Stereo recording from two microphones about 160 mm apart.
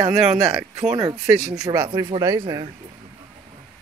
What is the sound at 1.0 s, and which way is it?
Speech, 20° right (ahead or behind).